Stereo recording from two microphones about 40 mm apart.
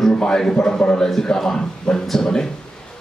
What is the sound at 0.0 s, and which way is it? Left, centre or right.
A man's voice, centre.